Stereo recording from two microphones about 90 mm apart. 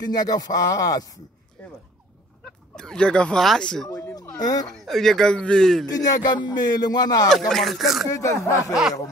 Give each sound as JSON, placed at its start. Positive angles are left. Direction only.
{"t": 0.1, "sound": "music", "side_deg": 45}
{"t": 2.7, "sound": "speech", "side_deg": 10}
{"t": 3.9, "sound": "music", "side_deg": 45}
{"t": 4.7, "sound": "speech", "side_deg": 5}
{"t": 5.9, "sound": "music", "side_deg": 45}
{"t": 7.2, "sound": "speech", "side_deg": 5}
{"t": 8.1, "sound": "speech", "side_deg": 35}